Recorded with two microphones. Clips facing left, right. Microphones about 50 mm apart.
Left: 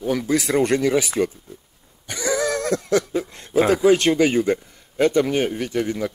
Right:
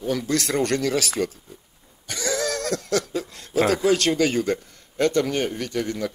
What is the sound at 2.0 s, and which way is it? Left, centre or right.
Dog, centre.